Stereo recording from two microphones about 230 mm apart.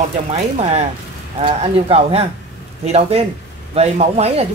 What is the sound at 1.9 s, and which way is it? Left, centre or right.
Speech, right.